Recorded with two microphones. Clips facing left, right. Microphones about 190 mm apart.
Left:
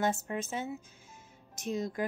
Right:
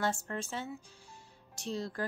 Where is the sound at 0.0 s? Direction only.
20° left (ahead or behind).